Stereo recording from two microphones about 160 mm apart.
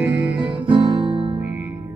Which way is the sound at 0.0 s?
10° right (ahead or behind).